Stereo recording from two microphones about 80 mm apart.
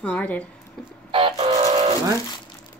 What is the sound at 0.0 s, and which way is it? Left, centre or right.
Speech, centre.